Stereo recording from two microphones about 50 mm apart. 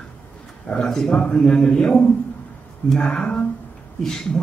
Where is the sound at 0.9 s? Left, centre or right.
Centre.